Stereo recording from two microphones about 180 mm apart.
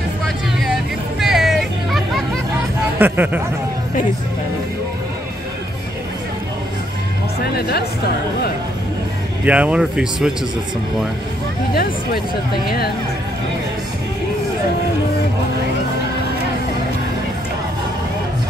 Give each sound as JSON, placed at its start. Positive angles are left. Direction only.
{"t": 1.2, "sound": "hubbub", "side_deg": 0}
{"t": 3.0, "sound": "speech", "side_deg": -10}
{"t": 7.5, "sound": "speech", "side_deg": 60}
{"t": 9.4, "sound": "speech", "side_deg": -5}
{"t": 11.7, "sound": "speech", "side_deg": 55}